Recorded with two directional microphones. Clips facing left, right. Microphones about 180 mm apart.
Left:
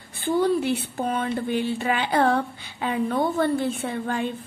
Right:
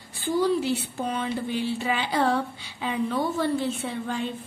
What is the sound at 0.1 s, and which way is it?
A woman's voice, 60° left (ahead or behind).